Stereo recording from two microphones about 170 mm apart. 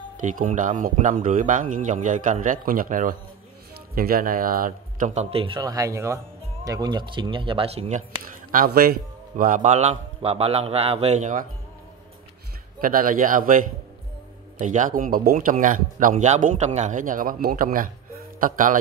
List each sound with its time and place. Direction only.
0.2 s speech: 50° right (ahead or behind)
8.5 s speech: 55° right (ahead or behind)
9.4 s speech: 50° right (ahead or behind)
12.8 s speech: 55° right (ahead or behind)